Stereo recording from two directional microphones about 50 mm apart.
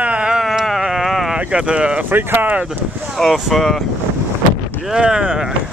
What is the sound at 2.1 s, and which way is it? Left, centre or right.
Speech, right.